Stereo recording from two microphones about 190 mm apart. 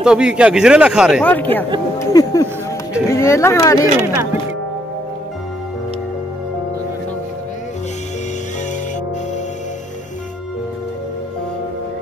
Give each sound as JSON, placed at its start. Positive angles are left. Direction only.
{"t": 0.0, "sound": "speech", "side_deg": -5}
{"t": 1.2, "sound": "speech", "side_deg": 10}
{"t": 2.0, "sound": "a sound", "side_deg": 20}
{"t": 3.1, "sound": "speech", "side_deg": 15}
{"t": 4.0, "sound": "speech", "side_deg": -15}